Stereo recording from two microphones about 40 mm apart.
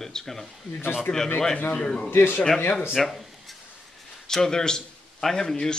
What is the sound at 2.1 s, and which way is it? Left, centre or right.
Speech, left.